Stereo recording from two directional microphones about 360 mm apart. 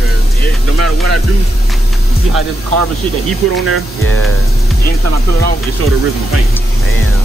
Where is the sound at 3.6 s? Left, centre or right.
Left.